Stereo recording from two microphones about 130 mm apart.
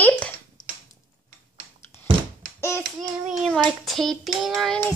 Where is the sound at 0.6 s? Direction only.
35° left (ahead or behind).